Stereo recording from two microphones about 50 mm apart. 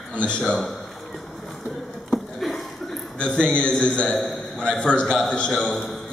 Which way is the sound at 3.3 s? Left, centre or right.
Left.